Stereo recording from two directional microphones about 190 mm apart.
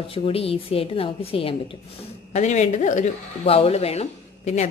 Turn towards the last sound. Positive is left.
turn(degrees=35)  # may be behind; listen again after turning